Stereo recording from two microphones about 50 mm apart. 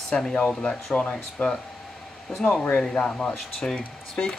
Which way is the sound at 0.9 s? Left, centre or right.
Left.